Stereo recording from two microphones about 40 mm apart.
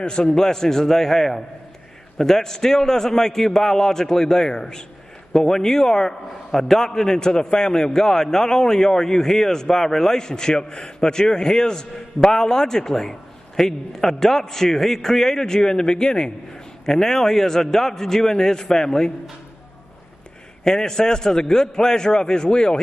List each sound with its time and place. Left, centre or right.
0.0 s a man's voice: left
20.6 s a man's voice: centre